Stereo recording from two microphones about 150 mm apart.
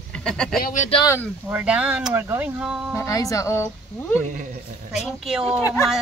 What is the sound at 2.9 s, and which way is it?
Speech, 20° left (ahead or behind).